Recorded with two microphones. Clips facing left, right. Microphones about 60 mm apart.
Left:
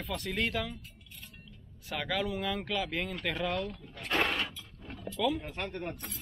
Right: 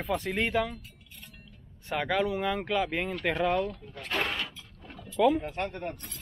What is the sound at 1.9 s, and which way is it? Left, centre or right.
Speech, centre.